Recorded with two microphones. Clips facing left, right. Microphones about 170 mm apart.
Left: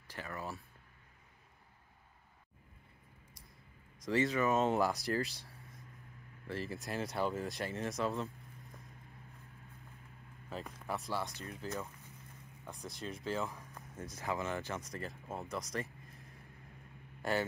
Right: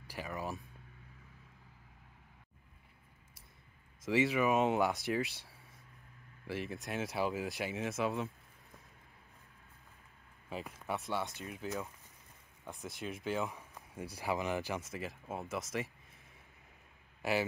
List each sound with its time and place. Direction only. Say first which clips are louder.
0.1 s speech: right 3 dB; 15° right (ahead or behind)
4.0 s speech: right 1 dB; 5° right (ahead or behind)
6.7 s speech: even; centre (ahead or behind)
10.5 s a man's voice: right 1 dB; centre (ahead or behind)